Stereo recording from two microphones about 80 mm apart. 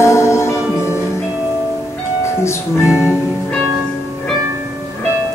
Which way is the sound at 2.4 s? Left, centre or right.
Left.